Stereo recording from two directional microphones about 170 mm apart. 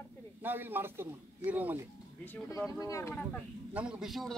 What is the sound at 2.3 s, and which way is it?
Speech, 20° left (ahead or behind).